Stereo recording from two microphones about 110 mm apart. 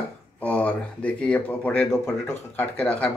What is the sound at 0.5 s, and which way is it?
Speech, 10° left (ahead or behind).